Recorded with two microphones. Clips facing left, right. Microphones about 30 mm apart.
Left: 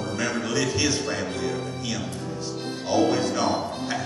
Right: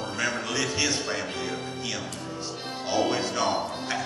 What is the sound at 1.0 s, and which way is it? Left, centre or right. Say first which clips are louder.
Speech: left 3 dB; right.